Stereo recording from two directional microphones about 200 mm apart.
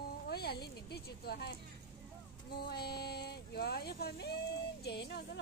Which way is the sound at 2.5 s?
55° left (ahead or behind).